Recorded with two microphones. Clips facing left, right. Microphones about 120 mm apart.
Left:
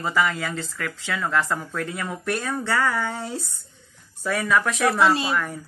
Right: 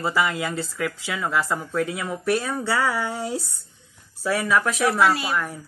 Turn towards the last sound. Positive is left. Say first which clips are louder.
# left 1 dB
turn(degrees=-5)  # may be behind; listen again after turning